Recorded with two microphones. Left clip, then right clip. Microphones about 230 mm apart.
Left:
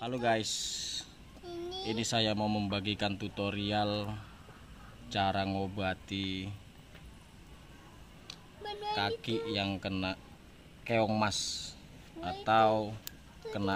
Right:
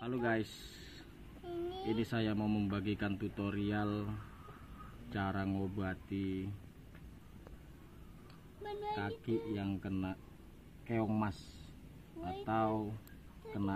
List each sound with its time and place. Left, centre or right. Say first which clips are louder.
0.0 s speech: left 5 dB; left
5.1 s speech: left 8 dB; left
8.6 s speech: left 6 dB; left